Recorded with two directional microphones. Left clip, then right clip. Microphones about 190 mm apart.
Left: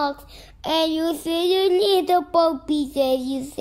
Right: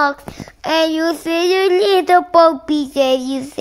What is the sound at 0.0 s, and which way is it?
Child singing, 10° right (ahead or behind).